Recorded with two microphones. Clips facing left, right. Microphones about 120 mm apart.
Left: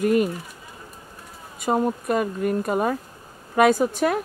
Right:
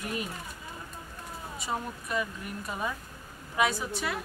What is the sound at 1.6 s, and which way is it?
Speech, 50° left (ahead or behind).